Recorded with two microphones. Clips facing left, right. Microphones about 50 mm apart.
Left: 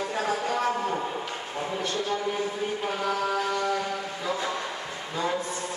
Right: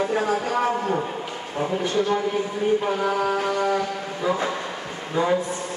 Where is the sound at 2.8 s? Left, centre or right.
Centre.